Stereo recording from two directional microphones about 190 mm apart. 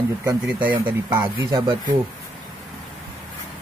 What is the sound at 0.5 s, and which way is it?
Speech, 10° right (ahead or behind).